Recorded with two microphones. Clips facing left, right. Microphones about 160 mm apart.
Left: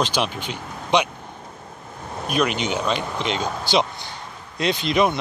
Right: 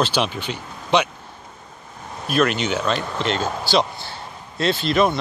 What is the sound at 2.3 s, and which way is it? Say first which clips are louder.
Speech: right 2 dB; 10° left (ahead or behind).